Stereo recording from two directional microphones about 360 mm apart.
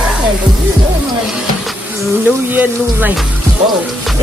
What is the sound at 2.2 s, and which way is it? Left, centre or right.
Speech, centre.